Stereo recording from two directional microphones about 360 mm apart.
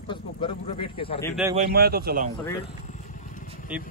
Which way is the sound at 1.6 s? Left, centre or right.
Right.